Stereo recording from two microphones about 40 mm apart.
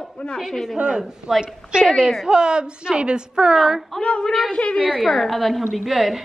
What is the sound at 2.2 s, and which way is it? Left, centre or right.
Speech, right.